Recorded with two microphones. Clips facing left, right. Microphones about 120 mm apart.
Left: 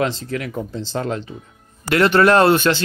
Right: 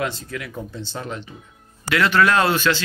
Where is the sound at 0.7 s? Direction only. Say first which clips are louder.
Left 7 dB; 40° left (ahead or behind).